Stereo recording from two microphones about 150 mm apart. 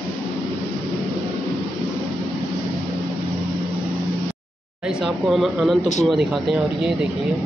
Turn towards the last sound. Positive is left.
turn(degrees=0)  # may be behind; listen again after turning